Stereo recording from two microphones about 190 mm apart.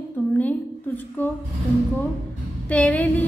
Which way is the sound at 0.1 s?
10° left (ahead or behind).